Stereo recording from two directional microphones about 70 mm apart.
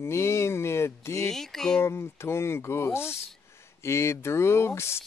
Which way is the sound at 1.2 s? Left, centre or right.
Centre.